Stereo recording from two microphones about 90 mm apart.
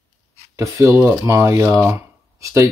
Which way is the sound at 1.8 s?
30° right (ahead or behind).